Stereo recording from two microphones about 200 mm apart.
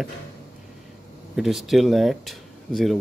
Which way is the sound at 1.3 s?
Centre (ahead or behind).